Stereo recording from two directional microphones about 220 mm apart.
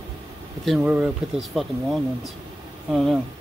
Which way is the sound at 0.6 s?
5° right (ahead or behind).